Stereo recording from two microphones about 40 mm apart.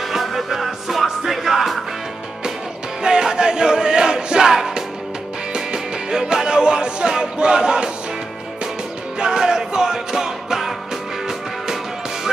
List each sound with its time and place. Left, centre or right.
0.1 s music: centre
3.0 s music: centre
9.2 s music: centre